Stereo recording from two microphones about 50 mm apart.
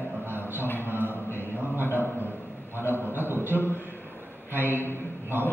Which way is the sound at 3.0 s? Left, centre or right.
Right.